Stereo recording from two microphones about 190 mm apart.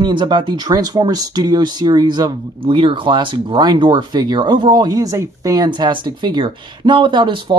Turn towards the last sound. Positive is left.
turn(degrees=-25)  # may be behind; listen again after turning